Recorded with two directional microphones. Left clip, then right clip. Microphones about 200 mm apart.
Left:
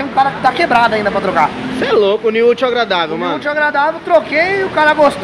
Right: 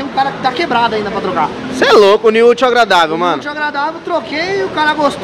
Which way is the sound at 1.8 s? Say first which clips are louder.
Right 5 dB; 30° right (ahead or behind).